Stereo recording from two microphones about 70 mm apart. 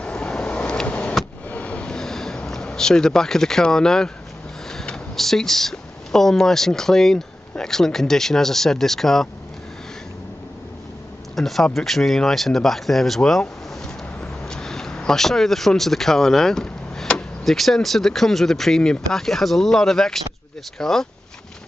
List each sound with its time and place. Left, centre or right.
0.0 s vehicle: centre
1.5 s a sound: centre
4.6 s speech: centre
11.3 s speech: centre